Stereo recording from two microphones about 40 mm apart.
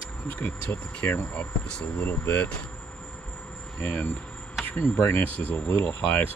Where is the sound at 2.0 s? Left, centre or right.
Left.